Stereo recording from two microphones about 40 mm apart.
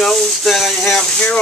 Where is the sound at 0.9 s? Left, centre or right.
Centre.